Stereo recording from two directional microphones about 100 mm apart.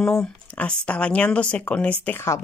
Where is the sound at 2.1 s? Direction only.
25° left (ahead or behind).